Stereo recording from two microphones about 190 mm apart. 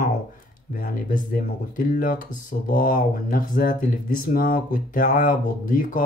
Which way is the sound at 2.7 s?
50° left (ahead or behind).